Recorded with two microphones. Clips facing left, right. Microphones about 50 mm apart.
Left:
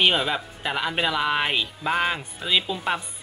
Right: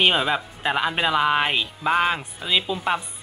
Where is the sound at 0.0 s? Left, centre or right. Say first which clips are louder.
Right 2 dB; centre.